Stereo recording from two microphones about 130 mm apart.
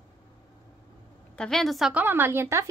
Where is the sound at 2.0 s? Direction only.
15° right (ahead or behind).